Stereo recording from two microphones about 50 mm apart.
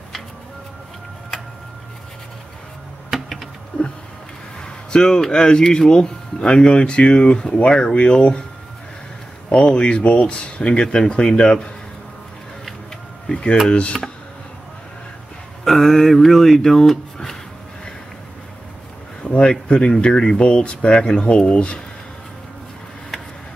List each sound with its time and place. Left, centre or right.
3.1 s a sound: centre
4.6 s speech: centre
9.5 s speech: centre
13.3 s speech: left
15.6 s speech: centre
19.2 s speech: left